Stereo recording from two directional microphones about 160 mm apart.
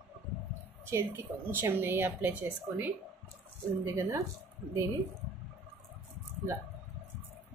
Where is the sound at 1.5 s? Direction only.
15° right (ahead or behind).